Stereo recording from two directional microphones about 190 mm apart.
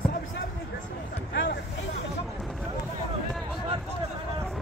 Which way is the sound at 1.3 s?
70° left (ahead or behind).